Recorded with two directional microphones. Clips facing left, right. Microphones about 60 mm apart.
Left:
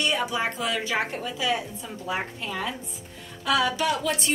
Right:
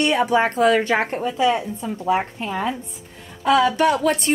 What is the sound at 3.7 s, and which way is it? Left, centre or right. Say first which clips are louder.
Speech: right 8 dB; right.